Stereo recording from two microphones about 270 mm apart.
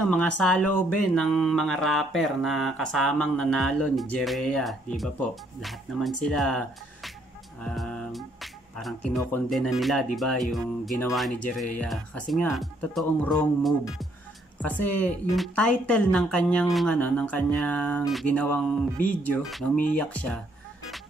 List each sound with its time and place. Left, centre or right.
0.0 s speech: centre
7.6 s music: centre
9.1 s speech: centre
15.0 s speech: centre